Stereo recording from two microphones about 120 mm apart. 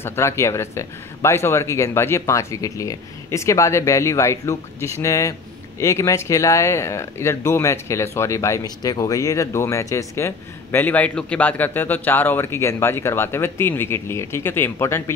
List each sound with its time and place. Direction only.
0.0 s speech: 20° left (ahead or behind)